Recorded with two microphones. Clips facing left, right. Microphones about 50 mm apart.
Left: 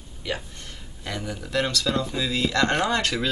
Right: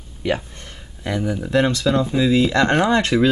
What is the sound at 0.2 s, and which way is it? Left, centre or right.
Speech, right.